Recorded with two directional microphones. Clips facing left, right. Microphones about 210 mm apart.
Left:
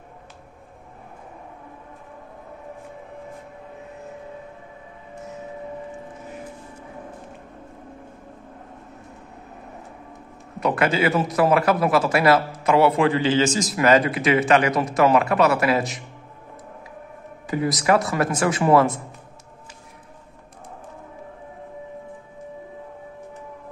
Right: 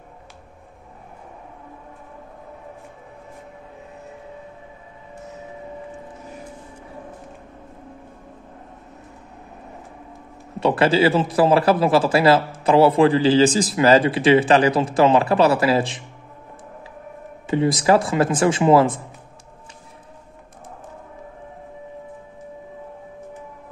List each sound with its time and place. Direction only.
10.6 s a man's voice: 30° right (ahead or behind)
17.5 s speech: 25° right (ahead or behind)